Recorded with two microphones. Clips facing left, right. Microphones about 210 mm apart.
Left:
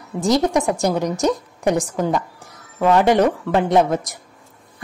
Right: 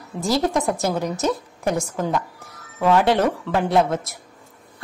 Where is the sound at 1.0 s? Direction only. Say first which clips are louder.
Left 3 dB; 15° left (ahead or behind).